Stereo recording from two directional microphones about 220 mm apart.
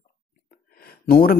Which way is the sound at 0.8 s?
45° left (ahead or behind).